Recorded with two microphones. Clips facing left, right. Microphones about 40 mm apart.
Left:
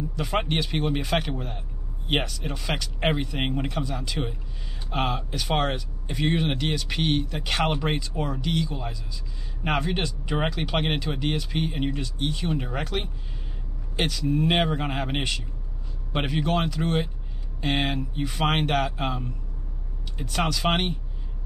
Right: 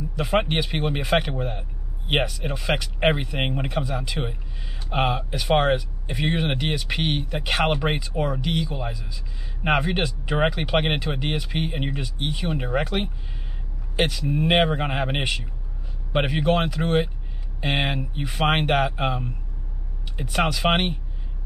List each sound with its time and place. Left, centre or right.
0.1 s speech: centre